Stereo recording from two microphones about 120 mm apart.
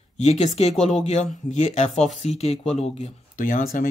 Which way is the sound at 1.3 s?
90° left.